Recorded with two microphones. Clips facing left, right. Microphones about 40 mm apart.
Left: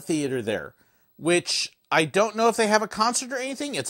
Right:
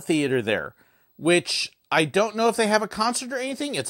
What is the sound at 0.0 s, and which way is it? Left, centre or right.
Speech, right.